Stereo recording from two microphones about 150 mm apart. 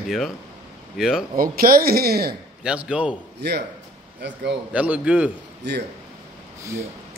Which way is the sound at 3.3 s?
90° right.